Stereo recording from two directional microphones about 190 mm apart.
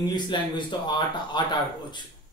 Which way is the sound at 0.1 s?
25° left (ahead or behind).